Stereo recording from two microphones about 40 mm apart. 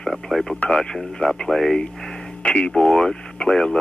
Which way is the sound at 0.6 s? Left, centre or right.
Centre.